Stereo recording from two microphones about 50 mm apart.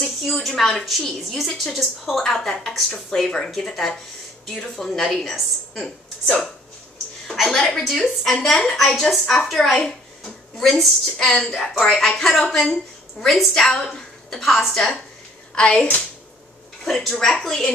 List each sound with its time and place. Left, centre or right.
0.2 s a woman's voice: centre
9.8 s a woman's voice: centre
16.8 s speech: centre